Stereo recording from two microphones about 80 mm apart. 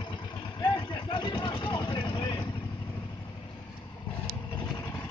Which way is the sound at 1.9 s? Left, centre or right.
Left.